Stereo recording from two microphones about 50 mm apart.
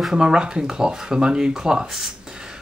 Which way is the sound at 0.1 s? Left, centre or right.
Centre.